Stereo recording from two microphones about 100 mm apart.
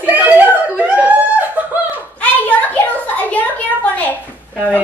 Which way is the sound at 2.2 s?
15° left (ahead or behind).